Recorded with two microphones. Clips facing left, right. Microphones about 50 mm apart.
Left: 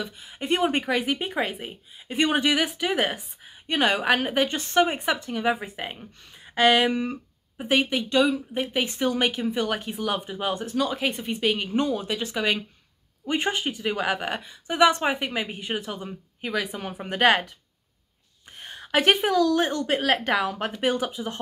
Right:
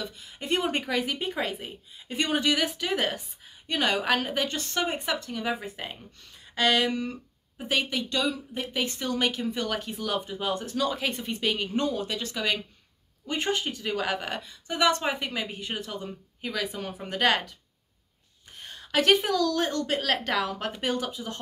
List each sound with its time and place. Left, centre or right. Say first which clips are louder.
0.0 s a woman's voice: left 4 dB; centre
18.6 s a woman's voice: left 3 dB; left